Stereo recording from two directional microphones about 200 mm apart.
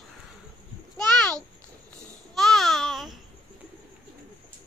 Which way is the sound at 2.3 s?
Centre (ahead or behind).